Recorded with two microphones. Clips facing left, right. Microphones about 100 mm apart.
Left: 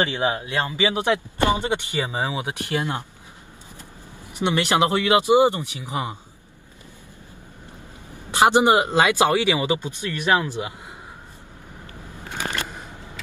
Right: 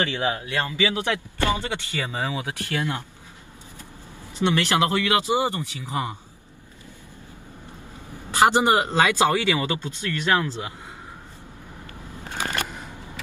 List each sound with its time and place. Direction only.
0.0 s speech: 20° left (ahead or behind)
4.4 s speech: 20° left (ahead or behind)
8.3 s speech: 20° left (ahead or behind)